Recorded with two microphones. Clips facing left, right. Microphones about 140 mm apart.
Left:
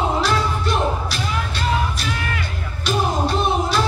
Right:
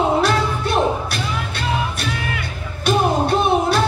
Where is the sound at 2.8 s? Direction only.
55° right (ahead or behind).